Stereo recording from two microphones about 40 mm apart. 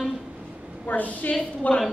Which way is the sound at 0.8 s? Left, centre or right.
Left.